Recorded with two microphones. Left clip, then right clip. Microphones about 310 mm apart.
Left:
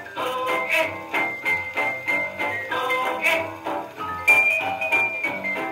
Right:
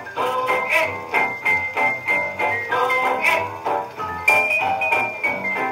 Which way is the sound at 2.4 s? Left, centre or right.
Right.